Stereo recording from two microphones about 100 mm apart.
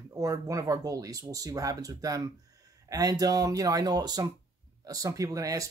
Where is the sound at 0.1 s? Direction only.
35° right (ahead or behind).